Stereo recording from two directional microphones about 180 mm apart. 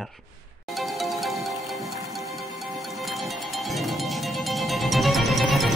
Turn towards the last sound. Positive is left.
turn(degrees=0)  # may be behind; listen again after turning